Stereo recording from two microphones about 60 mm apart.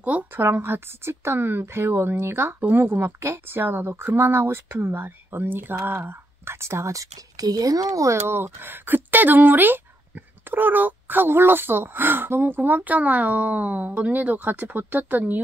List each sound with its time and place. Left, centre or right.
0.4 s speech: right
8.2 s speech: right